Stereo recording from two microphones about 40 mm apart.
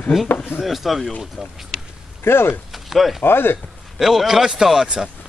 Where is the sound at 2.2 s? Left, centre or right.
Left.